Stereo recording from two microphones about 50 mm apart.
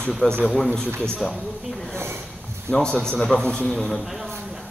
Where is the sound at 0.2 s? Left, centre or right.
Left.